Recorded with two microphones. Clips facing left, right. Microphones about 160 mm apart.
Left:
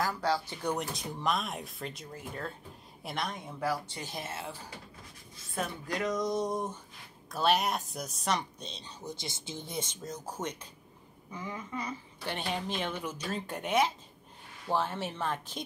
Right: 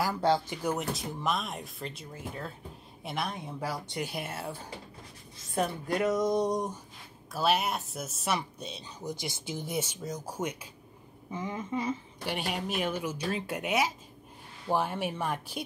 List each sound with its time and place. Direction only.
0.1 s speech: 20° right (ahead or behind)
0.6 s speech: 5° right (ahead or behind)
5.5 s speech: 40° right (ahead or behind)
6.3 s speech: 15° right (ahead or behind)
7.2 s speech: 5° right (ahead or behind)
9.2 s speech: 25° left (ahead or behind)
9.6 s speech: 10° right (ahead or behind)
11.3 s speech: 25° right (ahead or behind)
12.4 s speech: 10° right (ahead or behind)